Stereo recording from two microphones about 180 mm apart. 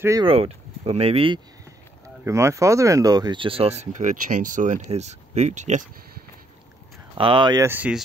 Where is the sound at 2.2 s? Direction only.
15° right (ahead or behind); by 5.8 s 40° right (ahead or behind).